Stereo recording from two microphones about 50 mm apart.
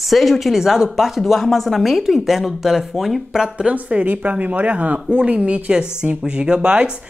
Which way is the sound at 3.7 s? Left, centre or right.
Right.